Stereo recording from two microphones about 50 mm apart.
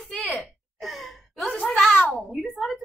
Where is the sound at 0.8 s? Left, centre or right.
Centre.